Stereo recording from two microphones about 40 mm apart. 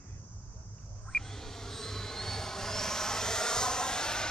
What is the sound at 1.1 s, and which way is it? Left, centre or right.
Vehicle, centre.